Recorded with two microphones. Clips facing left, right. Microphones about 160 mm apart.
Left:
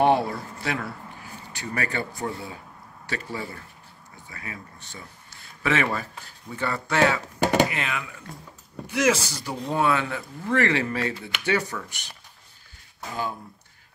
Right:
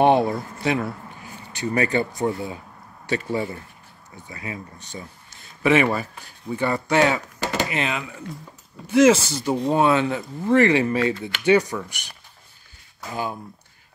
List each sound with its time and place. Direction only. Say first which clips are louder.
0.0 s speech: right 4 dB; 20° right (ahead or behind)
13.1 s speech: right 2 dB; 15° right (ahead or behind)